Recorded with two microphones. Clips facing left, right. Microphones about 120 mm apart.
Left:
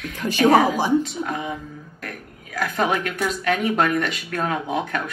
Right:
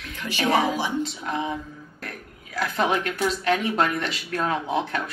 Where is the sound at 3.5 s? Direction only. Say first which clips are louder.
Left 3 dB; 45° left (ahead or behind).